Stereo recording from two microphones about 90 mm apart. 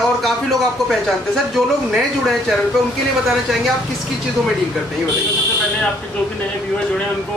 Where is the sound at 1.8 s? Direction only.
5° right (ahead or behind).